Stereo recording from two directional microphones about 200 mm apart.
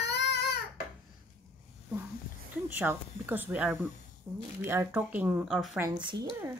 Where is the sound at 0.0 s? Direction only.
60° left (ahead or behind).